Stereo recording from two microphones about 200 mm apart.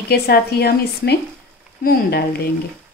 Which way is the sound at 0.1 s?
50° left (ahead or behind).